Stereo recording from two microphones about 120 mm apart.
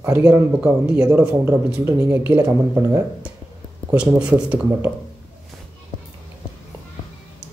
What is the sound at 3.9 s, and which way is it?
Speech, 10° right (ahead or behind).